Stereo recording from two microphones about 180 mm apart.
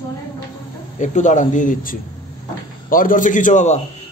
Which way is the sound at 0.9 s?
45° left (ahead or behind).